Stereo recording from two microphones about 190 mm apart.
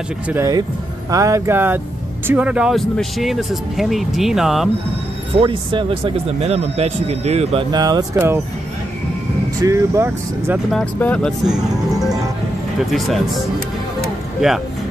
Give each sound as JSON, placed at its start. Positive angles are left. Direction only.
{"t": 0.3, "sound": "speech", "side_deg": -15}
{"t": 5.4, "sound": "speech", "side_deg": -25}
{"t": 7.7, "sound": "speech", "side_deg": -20}
{"t": 9.6, "sound": "speech", "side_deg": -15}
{"t": 10.7, "sound": "speech", "side_deg": 5}
{"t": 14.0, "sound": "music", "side_deg": 0}